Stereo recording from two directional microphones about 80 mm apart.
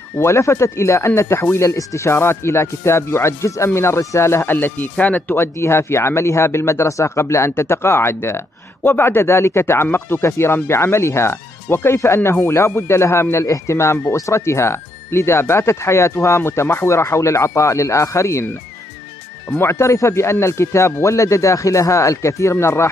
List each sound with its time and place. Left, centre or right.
0.2 s speech: left
1.7 s speech: left; by 5.4 s centre
5.4 s speech: left
19.6 s speech: left